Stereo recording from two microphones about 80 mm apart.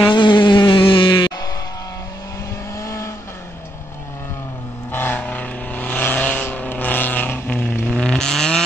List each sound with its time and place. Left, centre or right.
0.0 s insect: left
2.8 s vehicle: left
4.9 s vehicle: left
7.8 s vehicle: centre